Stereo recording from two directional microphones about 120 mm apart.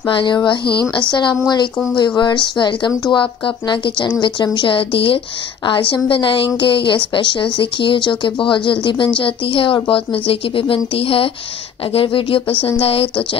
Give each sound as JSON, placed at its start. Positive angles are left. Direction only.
{"t": 0.0, "sound": "speech", "side_deg": 40}